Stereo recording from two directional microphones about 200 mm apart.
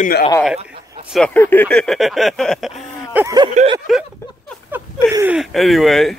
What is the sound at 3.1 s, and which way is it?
Speech, 10° right (ahead or behind).